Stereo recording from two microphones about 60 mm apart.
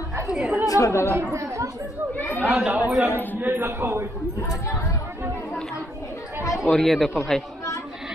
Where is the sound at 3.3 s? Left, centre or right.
Right.